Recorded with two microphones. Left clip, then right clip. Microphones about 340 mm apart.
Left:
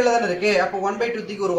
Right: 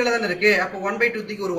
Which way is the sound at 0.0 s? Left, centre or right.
Centre.